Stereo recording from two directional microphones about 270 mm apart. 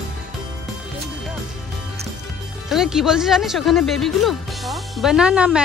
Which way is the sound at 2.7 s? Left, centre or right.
Centre.